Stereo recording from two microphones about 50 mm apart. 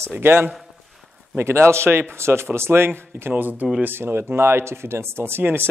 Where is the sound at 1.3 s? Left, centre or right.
Right.